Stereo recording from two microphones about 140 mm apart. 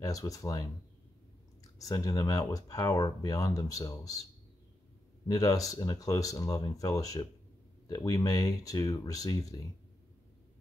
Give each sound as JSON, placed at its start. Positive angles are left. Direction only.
{"t": 0.0, "sound": "speech", "side_deg": 25}
{"t": 5.3, "sound": "speech", "side_deg": 25}